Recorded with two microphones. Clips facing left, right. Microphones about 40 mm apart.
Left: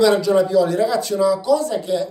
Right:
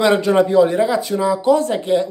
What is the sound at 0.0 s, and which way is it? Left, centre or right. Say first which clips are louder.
Speech: right 1 dB; right.